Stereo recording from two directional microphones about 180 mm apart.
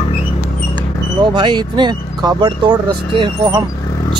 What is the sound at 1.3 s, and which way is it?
Speech, 25° right (ahead or behind).